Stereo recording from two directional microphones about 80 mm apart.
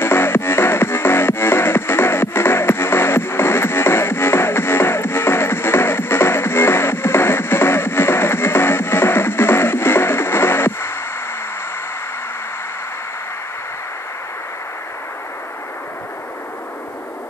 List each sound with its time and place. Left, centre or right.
0.0 s music: left